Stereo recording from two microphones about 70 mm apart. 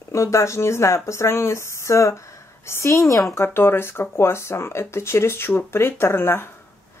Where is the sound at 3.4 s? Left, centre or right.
Left.